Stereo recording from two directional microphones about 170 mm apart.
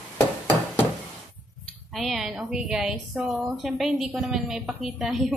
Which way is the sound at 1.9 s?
Centre (ahead or behind).